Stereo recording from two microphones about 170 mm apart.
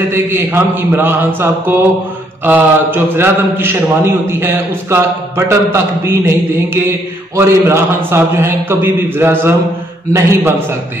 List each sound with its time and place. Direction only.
0.1 s a man's voice: 15° right (ahead or behind)